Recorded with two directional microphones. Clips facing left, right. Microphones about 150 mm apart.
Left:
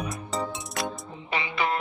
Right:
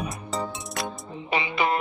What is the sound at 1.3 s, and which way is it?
Music, 15° right (ahead or behind).